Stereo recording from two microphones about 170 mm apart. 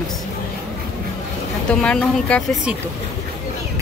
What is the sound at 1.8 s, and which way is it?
Speech, 5° left (ahead or behind).